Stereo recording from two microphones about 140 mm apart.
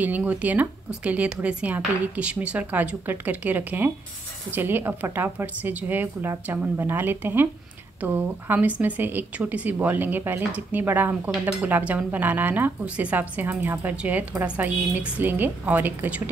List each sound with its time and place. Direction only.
0.0 s speech: 10° right (ahead or behind)